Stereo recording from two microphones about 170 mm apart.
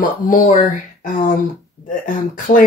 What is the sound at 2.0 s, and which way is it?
Speech, 55° left (ahead or behind).